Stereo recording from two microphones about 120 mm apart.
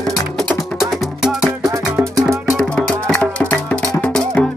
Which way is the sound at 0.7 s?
Centre (ahead or behind).